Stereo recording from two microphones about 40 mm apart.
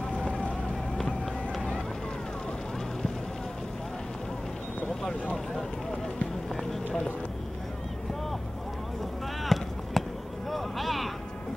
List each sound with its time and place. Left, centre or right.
0.1 s vehicle: left
9.4 s a sound: centre
10.5 s vehicle: centre